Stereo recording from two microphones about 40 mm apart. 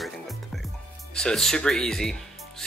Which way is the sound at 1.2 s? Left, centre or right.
Centre.